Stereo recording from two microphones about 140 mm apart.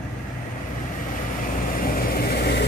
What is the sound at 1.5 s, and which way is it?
Vehicle, 90° left.